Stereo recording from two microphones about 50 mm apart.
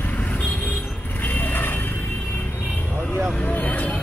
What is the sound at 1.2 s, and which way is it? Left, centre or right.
Vehicle, left.